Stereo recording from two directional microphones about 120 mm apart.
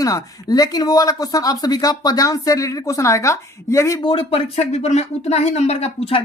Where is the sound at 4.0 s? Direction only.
50° left (ahead or behind).